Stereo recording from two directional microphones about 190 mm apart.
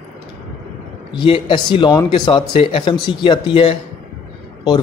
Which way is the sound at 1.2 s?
25° left (ahead or behind).